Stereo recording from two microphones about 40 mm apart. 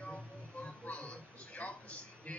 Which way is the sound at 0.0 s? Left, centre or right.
Left.